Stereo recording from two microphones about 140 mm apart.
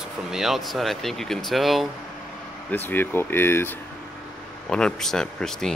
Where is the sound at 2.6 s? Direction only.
15° left (ahead or behind).